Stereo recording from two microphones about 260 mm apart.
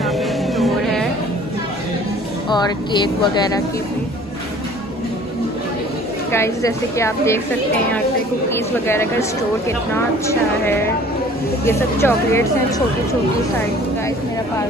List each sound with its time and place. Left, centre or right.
0.6 s music: centre
2.5 s speech: centre
6.3 s speech: centre
8.5 s speech: centre